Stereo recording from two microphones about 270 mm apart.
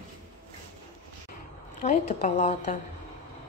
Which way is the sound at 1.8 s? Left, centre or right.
Left.